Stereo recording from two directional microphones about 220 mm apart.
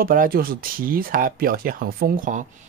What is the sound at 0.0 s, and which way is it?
Speech, 40° right (ahead or behind).